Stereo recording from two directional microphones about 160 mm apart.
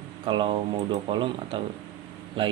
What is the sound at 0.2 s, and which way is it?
Speech, 30° right (ahead or behind).